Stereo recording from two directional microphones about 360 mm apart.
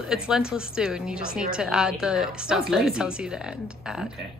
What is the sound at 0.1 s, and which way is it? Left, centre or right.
A woman's voice, centre.